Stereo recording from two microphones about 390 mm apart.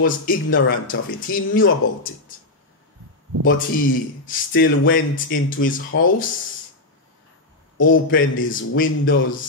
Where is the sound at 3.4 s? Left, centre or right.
Left.